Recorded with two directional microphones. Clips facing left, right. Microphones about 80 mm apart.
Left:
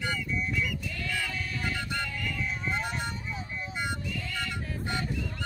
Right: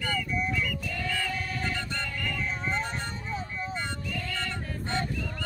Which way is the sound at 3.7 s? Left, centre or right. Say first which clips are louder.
Even; centre.